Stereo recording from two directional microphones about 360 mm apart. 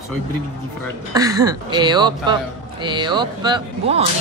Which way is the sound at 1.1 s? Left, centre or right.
Centre.